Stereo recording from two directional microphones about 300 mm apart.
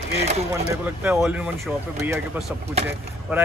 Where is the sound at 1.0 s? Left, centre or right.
Centre.